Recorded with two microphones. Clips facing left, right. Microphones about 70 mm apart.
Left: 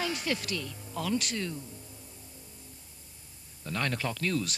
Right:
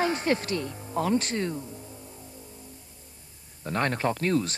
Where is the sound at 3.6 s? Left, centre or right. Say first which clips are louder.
Right 6 dB; right.